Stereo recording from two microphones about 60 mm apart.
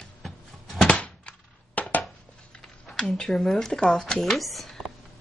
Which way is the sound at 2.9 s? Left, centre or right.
Centre.